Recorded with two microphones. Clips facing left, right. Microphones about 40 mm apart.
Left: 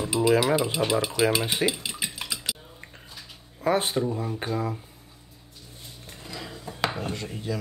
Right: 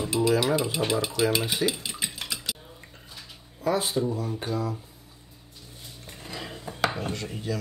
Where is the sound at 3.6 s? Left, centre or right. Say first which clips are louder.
Left 2 dB; left.